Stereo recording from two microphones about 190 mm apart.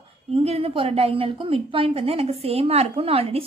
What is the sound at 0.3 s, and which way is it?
A woman's voice, 30° right (ahead or behind).